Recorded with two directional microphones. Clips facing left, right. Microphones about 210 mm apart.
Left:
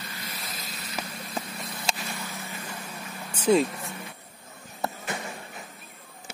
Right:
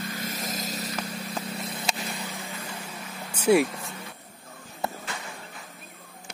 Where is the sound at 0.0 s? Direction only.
50° right (ahead or behind).